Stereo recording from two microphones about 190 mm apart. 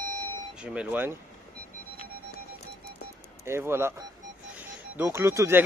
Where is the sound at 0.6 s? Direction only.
10° right (ahead or behind).